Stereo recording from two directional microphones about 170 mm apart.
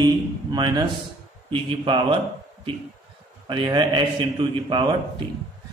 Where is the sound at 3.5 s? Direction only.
25° right (ahead or behind).